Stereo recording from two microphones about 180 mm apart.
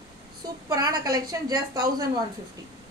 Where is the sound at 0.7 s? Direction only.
20° right (ahead or behind).